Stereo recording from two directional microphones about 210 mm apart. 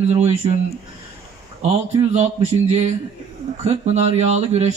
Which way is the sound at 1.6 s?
30° right (ahead or behind).